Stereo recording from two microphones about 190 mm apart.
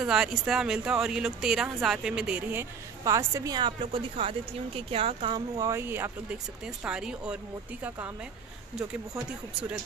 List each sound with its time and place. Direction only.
0.0 s speech: 5° right (ahead or behind)
3.0 s a woman's voice: 15° right (ahead or behind)